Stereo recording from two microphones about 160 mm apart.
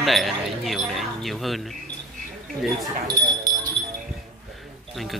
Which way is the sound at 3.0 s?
25° right (ahead or behind).